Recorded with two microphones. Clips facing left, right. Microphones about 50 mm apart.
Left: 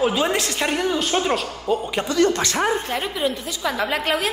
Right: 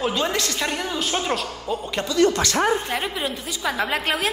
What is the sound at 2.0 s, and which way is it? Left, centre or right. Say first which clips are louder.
Speech: right 1 dB; left.